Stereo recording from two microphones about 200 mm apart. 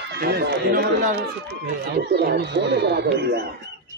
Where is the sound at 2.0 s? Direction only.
55° right (ahead or behind).